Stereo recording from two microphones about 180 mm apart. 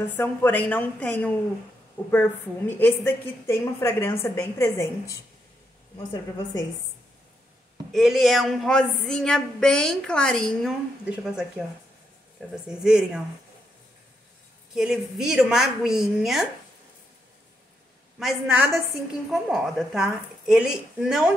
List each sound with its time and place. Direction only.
0.1 s a woman's voice: 10° left (ahead or behind)
6.1 s a woman's voice: 20° left (ahead or behind)
7.9 s speech: centre (ahead or behind)
12.6 s speech: 5° right (ahead or behind)
14.7 s speech: 5° right (ahead or behind)
18.2 s a woman's voice: 5° right (ahead or behind)